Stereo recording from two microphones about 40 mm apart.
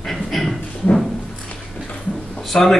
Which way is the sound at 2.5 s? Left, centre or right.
Centre.